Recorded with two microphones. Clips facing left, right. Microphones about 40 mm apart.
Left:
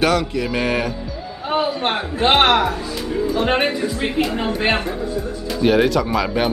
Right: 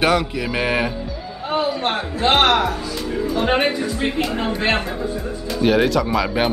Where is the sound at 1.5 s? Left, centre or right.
Left.